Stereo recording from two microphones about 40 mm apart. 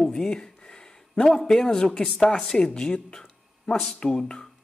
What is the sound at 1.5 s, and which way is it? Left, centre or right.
Speech, centre.